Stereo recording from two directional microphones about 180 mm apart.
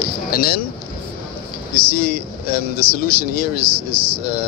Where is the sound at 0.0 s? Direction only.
55° left (ahead or behind).